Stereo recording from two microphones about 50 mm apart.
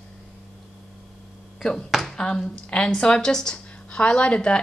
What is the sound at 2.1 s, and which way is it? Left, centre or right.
A woman's voice, centre.